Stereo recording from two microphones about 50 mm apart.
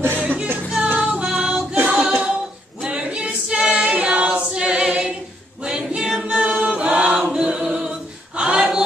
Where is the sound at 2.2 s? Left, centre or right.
Centre.